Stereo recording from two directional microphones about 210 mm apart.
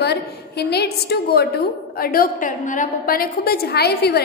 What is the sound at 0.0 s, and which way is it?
A woman's voice, 50° left (ahead or behind).